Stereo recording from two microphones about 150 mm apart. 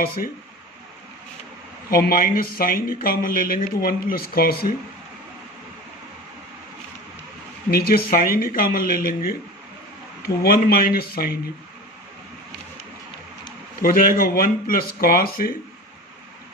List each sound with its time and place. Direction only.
1.9 s speech: 75° left (ahead or behind)
7.7 s speech: 85° left
13.8 s speech: 70° left (ahead or behind)